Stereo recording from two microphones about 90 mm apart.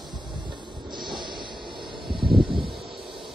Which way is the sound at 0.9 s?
60° right (ahead or behind).